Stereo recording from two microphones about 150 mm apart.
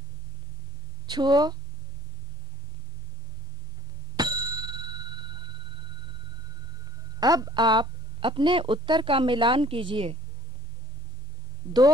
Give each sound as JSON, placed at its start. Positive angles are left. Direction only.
{"t": 1.0, "sound": "speech", "side_deg": -30}
{"t": 4.2, "sound": "bicycle bell", "side_deg": -25}
{"t": 7.2, "sound": "a woman's voice", "side_deg": -25}